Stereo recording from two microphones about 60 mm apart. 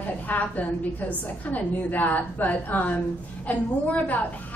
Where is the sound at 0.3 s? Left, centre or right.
Left.